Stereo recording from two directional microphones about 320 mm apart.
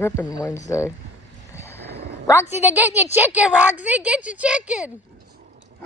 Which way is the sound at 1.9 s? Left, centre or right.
Right.